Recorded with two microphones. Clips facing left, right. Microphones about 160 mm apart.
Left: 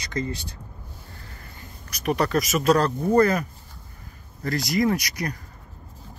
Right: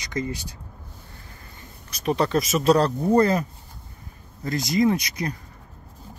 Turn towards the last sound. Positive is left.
turn(degrees=-25)  # may be behind; listen again after turning